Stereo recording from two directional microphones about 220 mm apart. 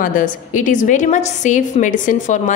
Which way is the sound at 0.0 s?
35° left (ahead or behind).